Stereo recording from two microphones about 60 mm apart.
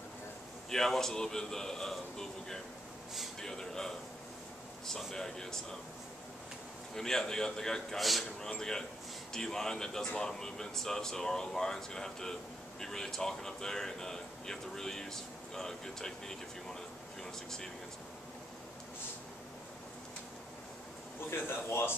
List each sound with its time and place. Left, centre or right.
0.7 s speech: centre
7.0 s speech: centre
21.3 s speech: left